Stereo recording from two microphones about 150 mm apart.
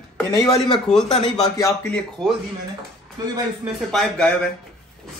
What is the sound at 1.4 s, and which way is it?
Speech, 20° left (ahead or behind).